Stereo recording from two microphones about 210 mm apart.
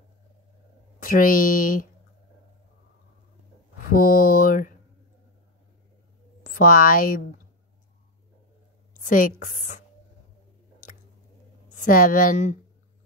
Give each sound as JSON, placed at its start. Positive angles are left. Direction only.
{"t": 0.9, "sound": "speech", "side_deg": 40}
{"t": 3.7, "sound": "speech", "side_deg": 40}
{"t": 6.5, "sound": "speech", "side_deg": 40}
{"t": 9.0, "sound": "speech", "side_deg": 40}
{"t": 11.7, "sound": "speech", "side_deg": 40}